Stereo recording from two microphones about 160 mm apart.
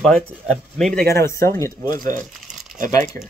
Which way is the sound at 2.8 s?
20° left (ahead or behind).